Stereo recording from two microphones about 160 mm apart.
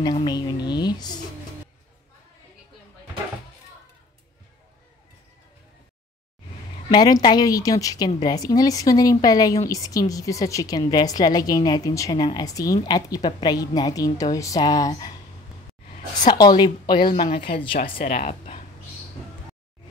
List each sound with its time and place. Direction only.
0.0 s a woman's voice: 25° left (ahead or behind)
6.9 s a woman's voice: 25° left (ahead or behind)
16.3 s a woman's voice: 25° left (ahead or behind)
18.1 s speech: 40° left (ahead or behind)